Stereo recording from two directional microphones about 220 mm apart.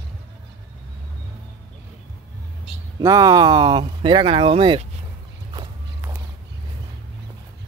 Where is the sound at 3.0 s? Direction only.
15° right (ahead or behind).